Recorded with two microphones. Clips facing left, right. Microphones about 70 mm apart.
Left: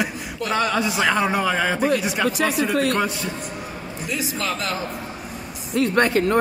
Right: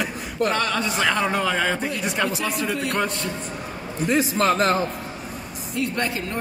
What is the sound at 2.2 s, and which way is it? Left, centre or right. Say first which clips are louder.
Speech: left 5 dB; left.